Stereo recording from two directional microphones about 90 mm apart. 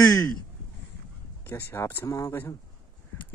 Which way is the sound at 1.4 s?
30° left (ahead or behind).